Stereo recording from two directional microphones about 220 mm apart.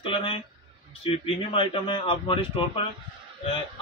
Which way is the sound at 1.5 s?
25° left (ahead or behind).